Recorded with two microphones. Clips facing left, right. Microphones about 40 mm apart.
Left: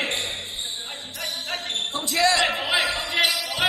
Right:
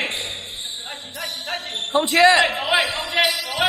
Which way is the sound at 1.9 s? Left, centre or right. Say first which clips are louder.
Right 8 dB; right.